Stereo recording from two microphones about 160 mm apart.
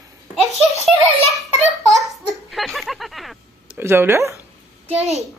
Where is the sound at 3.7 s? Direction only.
15° right (ahead or behind).